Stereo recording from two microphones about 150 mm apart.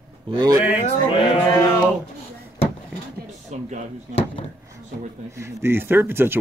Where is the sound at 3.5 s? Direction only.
50° right (ahead or behind).